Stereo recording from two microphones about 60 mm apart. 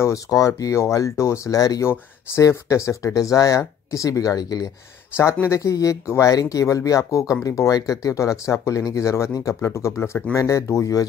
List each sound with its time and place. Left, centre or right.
0.3 s speech: left
2.4 s speech: left
5.5 s speech: left
6.0 s speech: left
6.3 s speech: left
7.4 s speech: left
10.3 s speech: left